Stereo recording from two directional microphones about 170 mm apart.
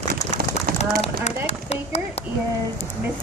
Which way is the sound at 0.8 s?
40° left (ahead or behind).